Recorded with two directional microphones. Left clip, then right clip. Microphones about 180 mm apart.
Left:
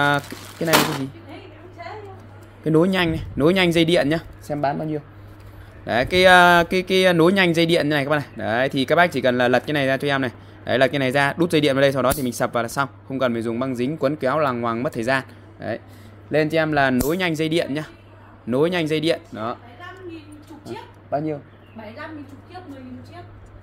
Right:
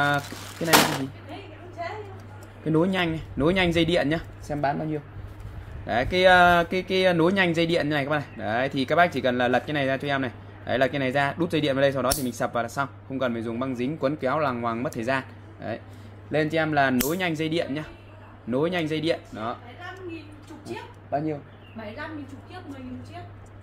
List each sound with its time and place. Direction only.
0.0 s speech: 55° left (ahead or behind)
2.6 s speech: 50° left (ahead or behind)